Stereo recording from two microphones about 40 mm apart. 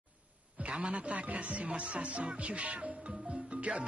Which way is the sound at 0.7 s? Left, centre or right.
Right.